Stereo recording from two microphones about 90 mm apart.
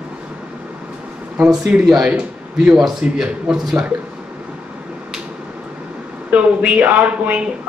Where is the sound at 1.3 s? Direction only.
10° right (ahead or behind).